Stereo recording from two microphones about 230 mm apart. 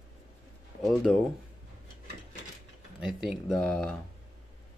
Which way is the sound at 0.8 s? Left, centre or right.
Centre.